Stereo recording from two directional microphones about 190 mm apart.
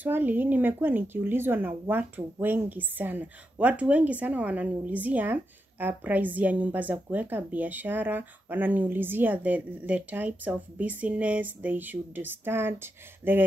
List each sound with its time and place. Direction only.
0.0 s a woman's voice: 10° right (ahead or behind)